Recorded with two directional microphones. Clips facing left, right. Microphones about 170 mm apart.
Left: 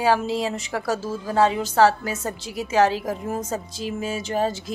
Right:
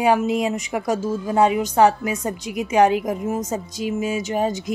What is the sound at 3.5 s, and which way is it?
Speech, 10° right (ahead or behind).